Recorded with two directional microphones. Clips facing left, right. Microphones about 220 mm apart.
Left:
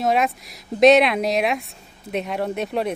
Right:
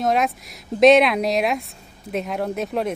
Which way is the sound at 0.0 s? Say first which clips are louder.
Even; centre (ahead or behind).